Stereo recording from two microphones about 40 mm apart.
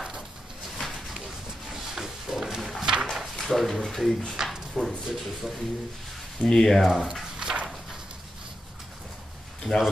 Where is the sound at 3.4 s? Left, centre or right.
Centre.